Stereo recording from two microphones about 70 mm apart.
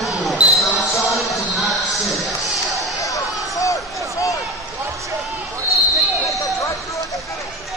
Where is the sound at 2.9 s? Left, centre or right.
Left.